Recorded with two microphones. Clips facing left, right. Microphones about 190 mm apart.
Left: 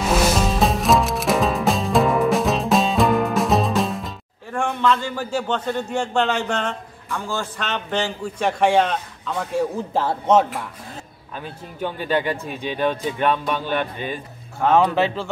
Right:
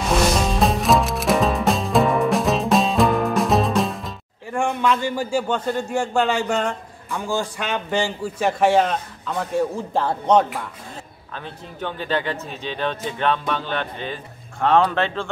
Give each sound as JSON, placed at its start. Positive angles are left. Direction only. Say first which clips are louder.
{"t": 0.0, "sound": "music", "louder": "even", "side_deg": 0}
{"t": 4.5, "sound": "a man's voice", "louder": "even", "side_deg": -10}